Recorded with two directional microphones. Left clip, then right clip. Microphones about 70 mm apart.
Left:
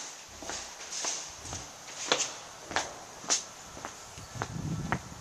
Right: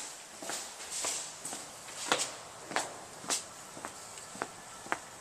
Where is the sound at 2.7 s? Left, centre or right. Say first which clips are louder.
Left 2 dB; centre.